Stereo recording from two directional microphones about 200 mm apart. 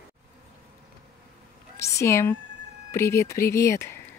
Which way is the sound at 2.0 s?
15° left (ahead or behind).